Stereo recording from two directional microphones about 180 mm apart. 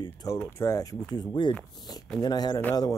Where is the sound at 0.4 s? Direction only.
15° left (ahead or behind).